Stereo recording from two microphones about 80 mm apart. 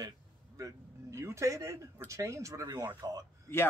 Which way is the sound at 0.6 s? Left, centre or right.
Right.